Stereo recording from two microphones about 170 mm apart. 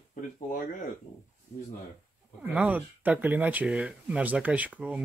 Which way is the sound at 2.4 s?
10° right (ahead or behind).